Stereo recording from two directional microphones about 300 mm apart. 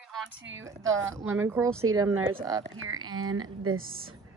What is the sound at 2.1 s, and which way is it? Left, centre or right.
Speech, right.